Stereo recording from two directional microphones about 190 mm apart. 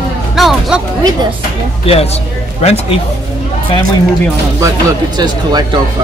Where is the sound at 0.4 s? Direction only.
Centre (ahead or behind).